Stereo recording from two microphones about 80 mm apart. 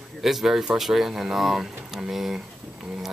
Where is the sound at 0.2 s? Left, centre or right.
Centre.